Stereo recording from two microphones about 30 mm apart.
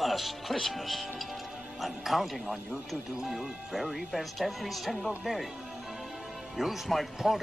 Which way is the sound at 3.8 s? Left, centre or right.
Right.